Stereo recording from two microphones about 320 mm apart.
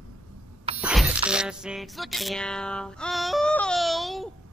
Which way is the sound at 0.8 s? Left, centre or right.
Centre.